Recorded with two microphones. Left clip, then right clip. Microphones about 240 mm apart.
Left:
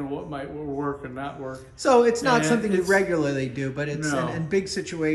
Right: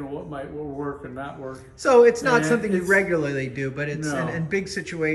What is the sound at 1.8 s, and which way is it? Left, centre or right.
A man's voice, centre.